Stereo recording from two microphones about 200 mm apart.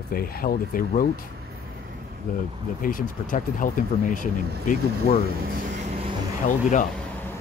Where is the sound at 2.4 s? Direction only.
45° left (ahead or behind).